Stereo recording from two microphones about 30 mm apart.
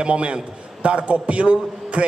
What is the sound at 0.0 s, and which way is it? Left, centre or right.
A man's voice, right.